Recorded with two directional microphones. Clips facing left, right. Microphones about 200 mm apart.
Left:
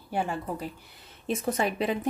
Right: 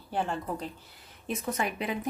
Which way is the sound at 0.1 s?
10° left (ahead or behind).